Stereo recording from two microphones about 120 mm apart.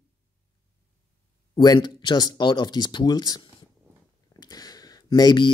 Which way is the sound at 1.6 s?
35° left (ahead or behind).